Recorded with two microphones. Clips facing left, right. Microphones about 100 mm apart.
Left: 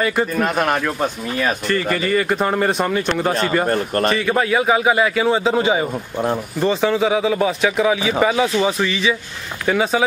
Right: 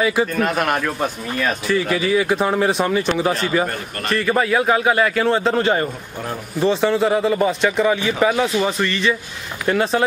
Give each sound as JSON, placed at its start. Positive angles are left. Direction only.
{"t": 0.0, "sound": "speech", "side_deg": 0}
{"t": 3.6, "sound": "a man's voice", "side_deg": 40}
{"t": 4.1, "sound": "speech", "side_deg": 0}